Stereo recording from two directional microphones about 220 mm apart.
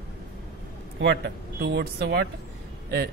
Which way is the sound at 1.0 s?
50° right (ahead or behind).